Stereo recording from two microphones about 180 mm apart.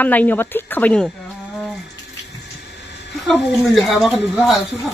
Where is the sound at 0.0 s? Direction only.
10° left (ahead or behind).